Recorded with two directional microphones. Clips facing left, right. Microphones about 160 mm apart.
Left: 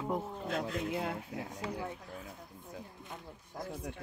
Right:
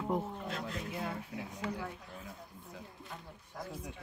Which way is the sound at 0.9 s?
70° left (ahead or behind).